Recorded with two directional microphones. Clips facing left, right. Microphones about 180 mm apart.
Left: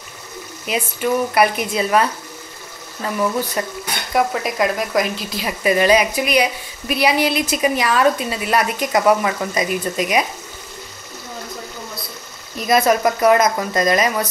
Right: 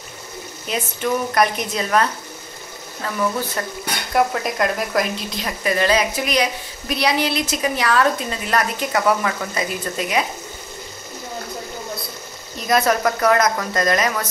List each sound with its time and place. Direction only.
0.7 s a woman's voice: 10° left (ahead or behind)
3.6 s a woman's voice: 15° left (ahead or behind)
4.1 s speech: centre (ahead or behind)
5.6 s a woman's voice: 15° left (ahead or behind)
12.6 s a woman's voice: 15° left (ahead or behind)